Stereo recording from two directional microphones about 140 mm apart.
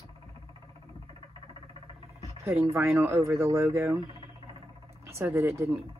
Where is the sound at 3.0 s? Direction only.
15° right (ahead or behind).